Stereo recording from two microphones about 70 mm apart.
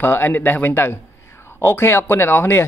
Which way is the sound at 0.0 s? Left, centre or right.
Left.